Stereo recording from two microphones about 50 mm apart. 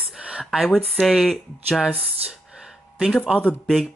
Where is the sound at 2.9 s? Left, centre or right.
Centre.